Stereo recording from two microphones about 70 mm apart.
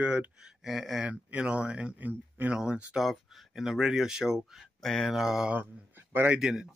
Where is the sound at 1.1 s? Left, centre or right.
Centre.